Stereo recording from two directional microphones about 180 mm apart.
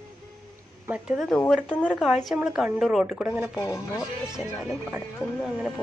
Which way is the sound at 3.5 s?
20° left (ahead or behind).